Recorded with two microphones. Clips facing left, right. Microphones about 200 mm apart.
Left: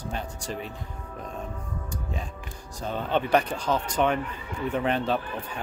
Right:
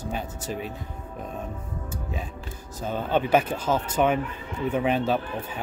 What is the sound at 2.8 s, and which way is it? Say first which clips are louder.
Speech: right 2 dB; 5° right (ahead or behind).